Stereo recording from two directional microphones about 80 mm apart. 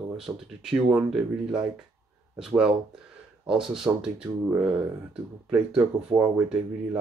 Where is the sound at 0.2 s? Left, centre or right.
Centre.